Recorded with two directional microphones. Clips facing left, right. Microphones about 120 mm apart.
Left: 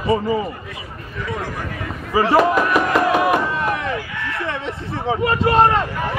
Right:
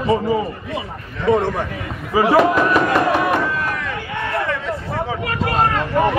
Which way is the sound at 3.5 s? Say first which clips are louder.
Left 2 dB; 25° left (ahead or behind).